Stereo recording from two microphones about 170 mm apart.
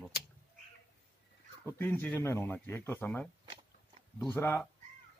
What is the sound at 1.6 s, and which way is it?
A man's voice, 10° left (ahead or behind).